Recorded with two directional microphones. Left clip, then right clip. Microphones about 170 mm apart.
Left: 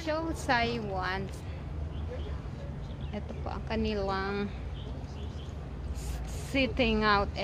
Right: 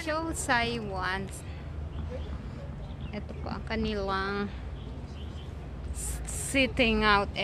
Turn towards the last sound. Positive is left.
turn(degrees=-20)  # may be behind; listen again after turning